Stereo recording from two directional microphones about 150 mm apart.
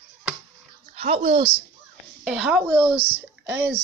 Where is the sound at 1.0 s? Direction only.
45° right (ahead or behind).